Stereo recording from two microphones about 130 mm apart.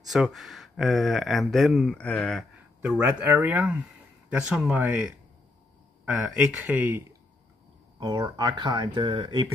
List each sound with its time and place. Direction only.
0.1 s speech: centre (ahead or behind)
2.8 s speech: 10° right (ahead or behind)
8.0 s speech: 35° right (ahead or behind)